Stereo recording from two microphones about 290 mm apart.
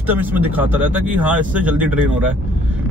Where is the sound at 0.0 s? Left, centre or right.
Centre.